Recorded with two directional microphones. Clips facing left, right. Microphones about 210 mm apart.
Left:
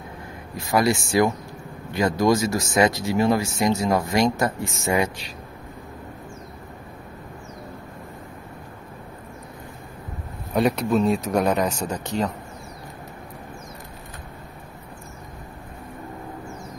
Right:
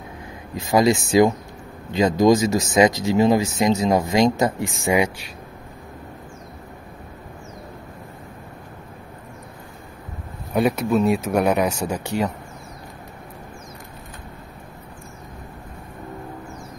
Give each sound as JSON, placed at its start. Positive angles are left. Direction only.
{"t": 0.6, "sound": "speech", "side_deg": -20}
{"t": 10.5, "sound": "speech", "side_deg": -5}